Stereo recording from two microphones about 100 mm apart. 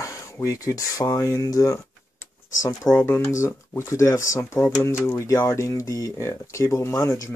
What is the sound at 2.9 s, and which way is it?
Speech, 20° left (ahead or behind).